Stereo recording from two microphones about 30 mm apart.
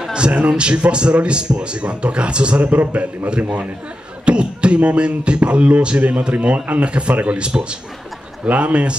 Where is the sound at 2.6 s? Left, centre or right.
Right.